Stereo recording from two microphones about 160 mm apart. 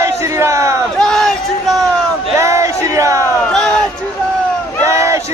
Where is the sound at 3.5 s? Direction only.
5° left (ahead or behind).